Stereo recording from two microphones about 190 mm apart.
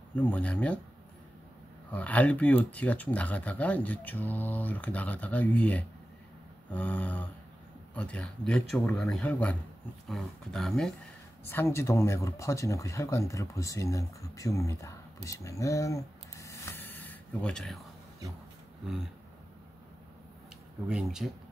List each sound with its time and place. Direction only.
0.1 s speech: 5° left (ahead or behind)
1.9 s speech: 5° left (ahead or behind)
11.4 s speech: 10° left (ahead or behind)
20.9 s speech: centre (ahead or behind)